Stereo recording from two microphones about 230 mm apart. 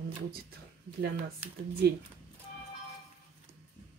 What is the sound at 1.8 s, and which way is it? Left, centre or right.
Speech, right.